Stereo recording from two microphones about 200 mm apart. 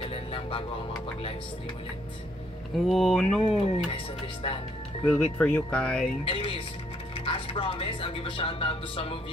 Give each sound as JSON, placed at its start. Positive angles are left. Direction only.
{"t": 0.0, "sound": "music", "side_deg": 30}
{"t": 2.9, "sound": "speech", "side_deg": 0}
{"t": 3.5, "sound": "speech", "side_deg": 30}
{"t": 5.0, "sound": "speech", "side_deg": 5}
{"t": 6.2, "sound": "speech", "side_deg": 30}